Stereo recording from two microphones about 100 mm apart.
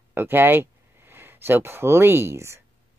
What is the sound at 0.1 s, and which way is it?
Speech, 20° right (ahead or behind).